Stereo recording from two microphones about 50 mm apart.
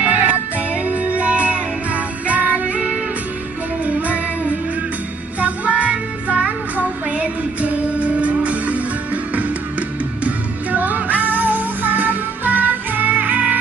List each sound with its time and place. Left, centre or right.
0.0 s music: right
5.4 s music: right